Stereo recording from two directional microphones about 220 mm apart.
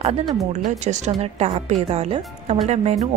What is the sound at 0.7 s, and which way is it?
A woman's voice, 30° right (ahead or behind).